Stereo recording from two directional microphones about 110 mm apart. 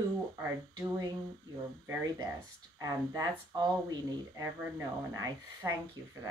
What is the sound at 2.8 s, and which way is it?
Speech, 30° right (ahead or behind).